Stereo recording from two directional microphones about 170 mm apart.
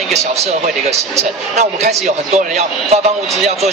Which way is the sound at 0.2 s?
40° right (ahead or behind).